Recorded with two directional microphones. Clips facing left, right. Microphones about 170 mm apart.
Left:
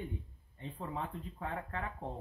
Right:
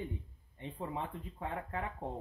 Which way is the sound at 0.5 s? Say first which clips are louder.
Right 1 dB; 15° right (ahead or behind).